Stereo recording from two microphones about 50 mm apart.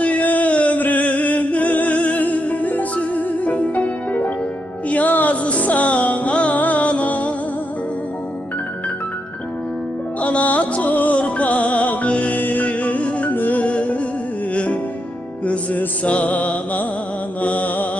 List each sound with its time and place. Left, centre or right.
0.0 s a sound: left
4.8 s music: left
10.2 s music: left